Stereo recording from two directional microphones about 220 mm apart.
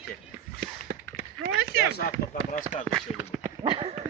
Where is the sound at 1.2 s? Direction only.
45° right (ahead or behind).